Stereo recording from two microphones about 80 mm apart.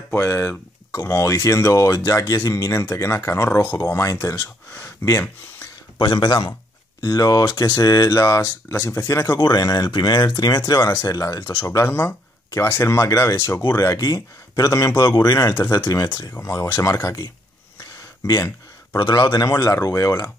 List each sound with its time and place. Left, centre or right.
0.1 s speech: left
5.0 s speech: left
6.1 s speech: left
7.0 s speech: left
8.9 s speech: left
11.6 s speech: left
18.9 s speech: left